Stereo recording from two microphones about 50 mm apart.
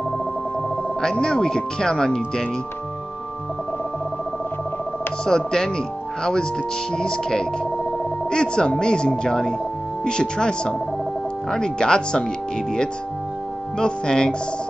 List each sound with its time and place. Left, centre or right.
1.2 s speech: centre
5.2 s speech: centre
6.9 s speech: centre
13.7 s speech: centre